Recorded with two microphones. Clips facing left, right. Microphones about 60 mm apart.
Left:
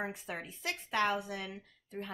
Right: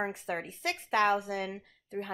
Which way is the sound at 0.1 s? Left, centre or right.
Right.